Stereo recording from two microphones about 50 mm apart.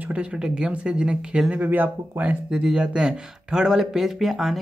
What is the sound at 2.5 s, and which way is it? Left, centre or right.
Speech, centre.